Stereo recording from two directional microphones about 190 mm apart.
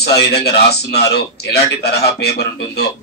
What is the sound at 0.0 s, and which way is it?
A man's voice, 60° left (ahead or behind).